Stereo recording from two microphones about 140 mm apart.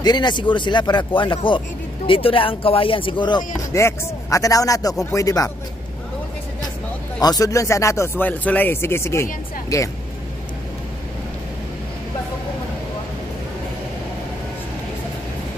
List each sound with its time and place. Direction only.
0.0 s speech: 30° left (ahead or behind)
7.2 s speech: 25° left (ahead or behind)